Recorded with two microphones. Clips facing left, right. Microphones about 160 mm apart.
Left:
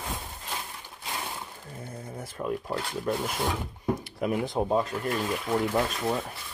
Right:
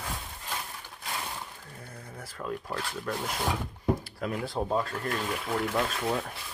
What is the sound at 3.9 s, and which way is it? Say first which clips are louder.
Speech: left 2 dB; 20° left (ahead or behind).